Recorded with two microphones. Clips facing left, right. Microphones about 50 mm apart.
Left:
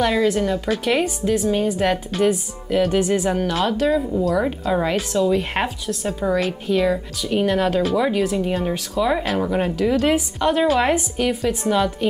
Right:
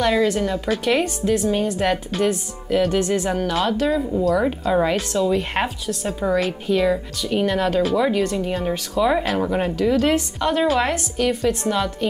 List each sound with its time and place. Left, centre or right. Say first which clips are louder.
0.0 s a woman's voice: even; centre